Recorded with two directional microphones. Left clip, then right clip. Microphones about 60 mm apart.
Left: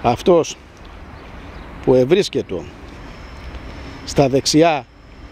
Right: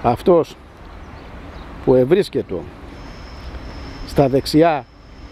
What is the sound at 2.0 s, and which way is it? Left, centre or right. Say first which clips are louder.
Speech: even; centre.